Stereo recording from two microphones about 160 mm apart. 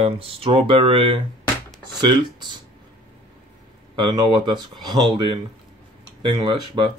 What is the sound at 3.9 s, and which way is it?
Speech, 30° right (ahead or behind).